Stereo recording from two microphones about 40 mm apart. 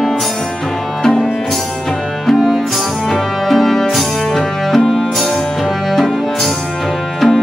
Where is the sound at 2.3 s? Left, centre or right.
Centre.